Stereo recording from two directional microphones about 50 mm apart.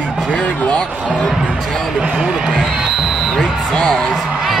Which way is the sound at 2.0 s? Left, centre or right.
Centre.